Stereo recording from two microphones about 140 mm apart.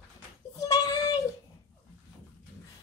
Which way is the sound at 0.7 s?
25° left (ahead or behind).